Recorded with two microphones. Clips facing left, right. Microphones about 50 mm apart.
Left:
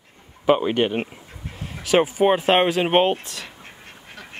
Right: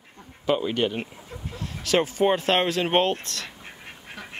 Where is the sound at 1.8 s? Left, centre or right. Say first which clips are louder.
Left 4 dB; centre.